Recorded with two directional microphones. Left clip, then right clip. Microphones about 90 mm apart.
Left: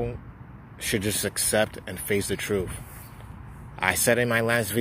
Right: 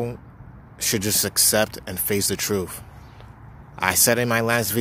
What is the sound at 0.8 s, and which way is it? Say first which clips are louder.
Speech: right 4 dB; 90° right.